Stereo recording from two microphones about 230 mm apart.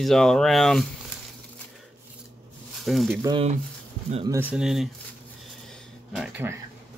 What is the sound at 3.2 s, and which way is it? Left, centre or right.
Speech, centre.